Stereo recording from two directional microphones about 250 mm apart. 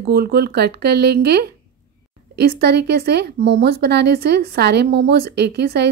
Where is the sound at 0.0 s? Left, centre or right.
Right.